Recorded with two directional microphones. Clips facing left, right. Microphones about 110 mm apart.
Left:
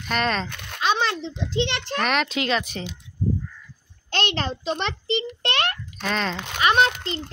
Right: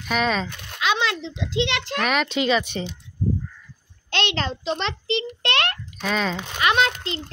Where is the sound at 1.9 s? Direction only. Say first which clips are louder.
Even; centre (ahead or behind).